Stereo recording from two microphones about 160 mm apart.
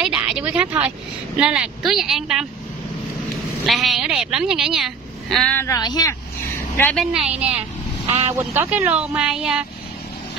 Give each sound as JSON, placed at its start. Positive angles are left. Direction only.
{"t": 0.0, "sound": "speech", "side_deg": -5}
{"t": 3.6, "sound": "a woman's voice", "side_deg": 0}
{"t": 5.7, "sound": "speech", "side_deg": 25}
{"t": 6.8, "sound": "a woman's voice", "side_deg": 5}
{"t": 8.1, "sound": "speech", "side_deg": -45}
{"t": 8.4, "sound": "a woman's voice", "side_deg": -10}